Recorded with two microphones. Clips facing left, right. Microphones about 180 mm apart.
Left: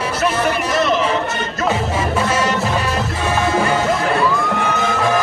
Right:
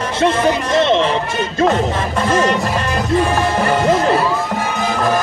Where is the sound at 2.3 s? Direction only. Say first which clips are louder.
Right 3 dB; 10° left (ahead or behind).